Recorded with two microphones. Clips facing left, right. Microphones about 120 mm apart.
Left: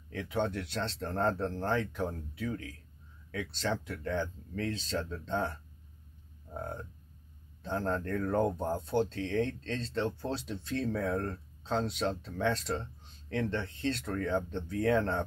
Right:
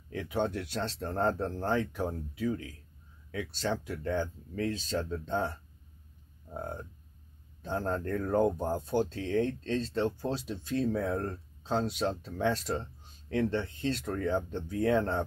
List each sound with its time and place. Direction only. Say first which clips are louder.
0.1 s speech: right 1 dB; 15° right (ahead or behind)
3.3 s speech: right 1 dB; 20° right (ahead or behind)
6.5 s speech: right 1 dB; 15° right (ahead or behind)